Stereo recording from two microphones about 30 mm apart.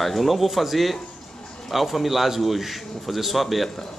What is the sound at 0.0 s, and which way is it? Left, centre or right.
A man's voice, centre.